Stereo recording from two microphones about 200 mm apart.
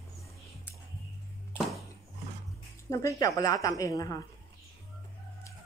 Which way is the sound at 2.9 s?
15° left (ahead or behind).